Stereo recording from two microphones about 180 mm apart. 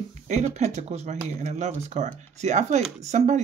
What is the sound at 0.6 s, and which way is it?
Speech, 35° right (ahead or behind).